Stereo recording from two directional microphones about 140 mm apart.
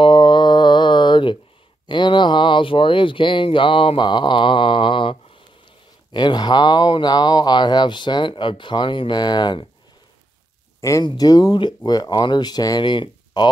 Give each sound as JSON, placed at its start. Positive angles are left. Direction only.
{"t": 0.0, "sound": "mantra", "side_deg": 35}
{"t": 1.9, "sound": "speech", "side_deg": 35}
{"t": 10.8, "sound": "speech", "side_deg": 20}